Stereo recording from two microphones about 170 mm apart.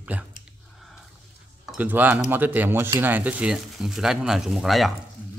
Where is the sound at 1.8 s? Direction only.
10° right (ahead or behind).